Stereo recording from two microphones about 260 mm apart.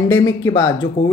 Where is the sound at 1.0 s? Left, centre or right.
Left.